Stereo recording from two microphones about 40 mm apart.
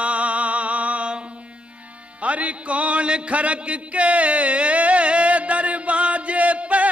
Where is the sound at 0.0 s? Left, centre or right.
Right.